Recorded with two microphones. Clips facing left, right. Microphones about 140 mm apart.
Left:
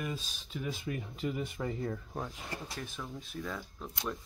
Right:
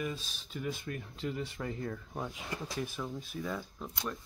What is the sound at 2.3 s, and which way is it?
Speech, 5° right (ahead or behind).